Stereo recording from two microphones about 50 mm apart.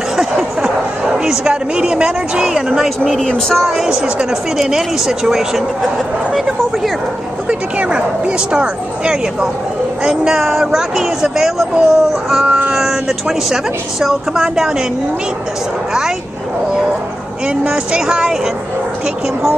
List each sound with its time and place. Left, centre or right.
0.2 s a sound: centre
3.6 s speech: centre
7.4 s speech: right
17.6 s speech: centre